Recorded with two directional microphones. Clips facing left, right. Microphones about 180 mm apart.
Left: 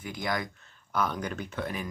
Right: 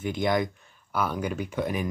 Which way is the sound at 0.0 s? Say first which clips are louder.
Right 7 dB; 25° right (ahead or behind).